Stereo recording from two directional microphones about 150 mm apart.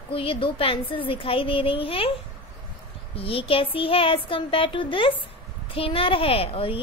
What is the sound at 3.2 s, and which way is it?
A child's voice, 40° left (ahead or behind).